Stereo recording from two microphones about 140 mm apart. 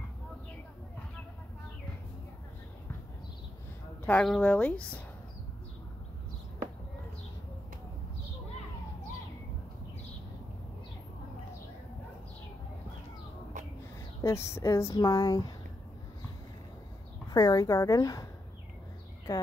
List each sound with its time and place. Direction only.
4.0 s a woman's voice: 5° left (ahead or behind)
14.2 s speech: 20° left (ahead or behind)
17.3 s speech: 25° left (ahead or behind)